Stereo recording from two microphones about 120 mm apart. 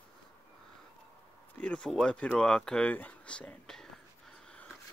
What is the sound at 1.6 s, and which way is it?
Speech, 5° left (ahead or behind).